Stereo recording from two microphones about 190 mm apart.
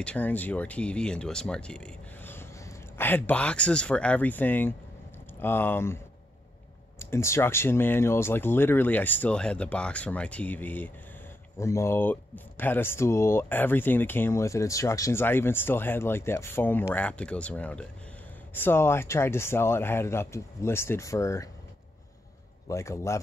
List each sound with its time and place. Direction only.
0.0 s speech: 5° left (ahead or behind)
7.0 s speech: 15° left (ahead or behind)
22.7 s speech: 15° left (ahead or behind)